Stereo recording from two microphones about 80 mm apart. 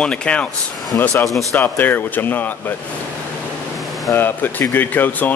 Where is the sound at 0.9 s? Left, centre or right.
Left.